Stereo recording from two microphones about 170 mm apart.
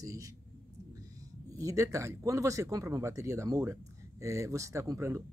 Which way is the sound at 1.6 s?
20° right (ahead or behind).